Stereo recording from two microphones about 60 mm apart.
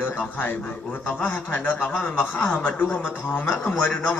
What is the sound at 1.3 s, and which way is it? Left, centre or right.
Speech, left.